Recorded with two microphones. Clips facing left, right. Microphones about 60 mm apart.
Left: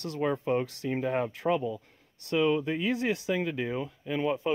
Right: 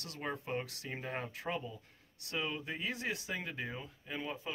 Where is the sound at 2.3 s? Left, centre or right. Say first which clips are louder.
Left 13 dB; left.